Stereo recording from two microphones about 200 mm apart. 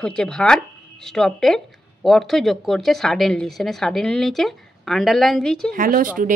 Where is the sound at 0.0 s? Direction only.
5° left (ahead or behind).